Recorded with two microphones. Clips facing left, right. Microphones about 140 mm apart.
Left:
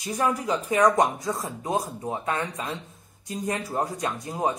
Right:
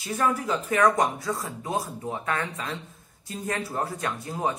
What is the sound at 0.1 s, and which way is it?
A woman's voice, 15° left (ahead or behind).